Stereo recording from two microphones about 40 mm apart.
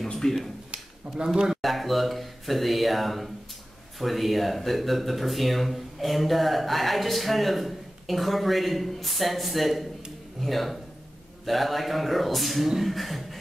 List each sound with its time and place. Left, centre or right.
0.1 s speech: centre
0.7 s a sound: centre
1.5 s speech: centre